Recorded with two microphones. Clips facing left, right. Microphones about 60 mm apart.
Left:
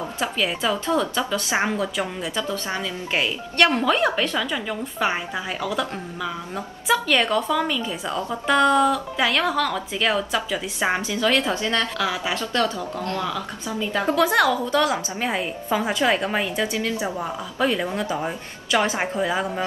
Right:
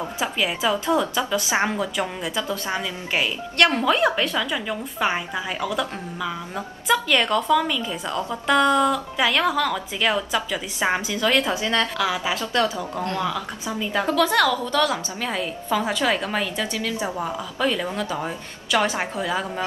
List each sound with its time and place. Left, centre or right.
0.2 s speech: centre
14.0 s a woman's voice: centre